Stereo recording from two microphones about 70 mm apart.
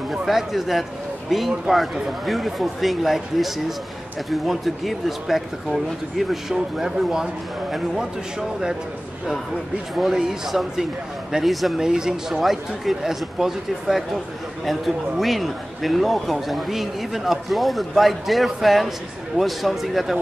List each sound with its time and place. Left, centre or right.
0.1 s a man's voice: centre
9.9 s a man's voice: centre